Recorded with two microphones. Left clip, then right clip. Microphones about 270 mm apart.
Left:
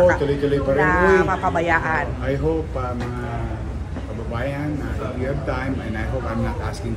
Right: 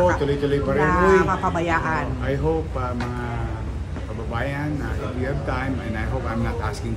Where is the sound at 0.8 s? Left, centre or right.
Centre.